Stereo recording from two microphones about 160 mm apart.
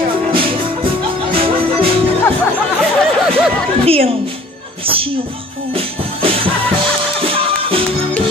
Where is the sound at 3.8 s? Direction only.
35° right (ahead or behind).